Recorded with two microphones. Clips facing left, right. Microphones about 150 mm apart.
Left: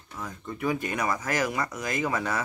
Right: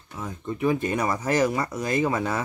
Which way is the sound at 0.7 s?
30° right (ahead or behind).